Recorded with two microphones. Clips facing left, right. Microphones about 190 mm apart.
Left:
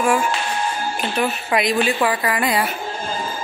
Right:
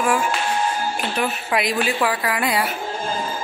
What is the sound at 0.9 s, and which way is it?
Speech, 5° right (ahead or behind).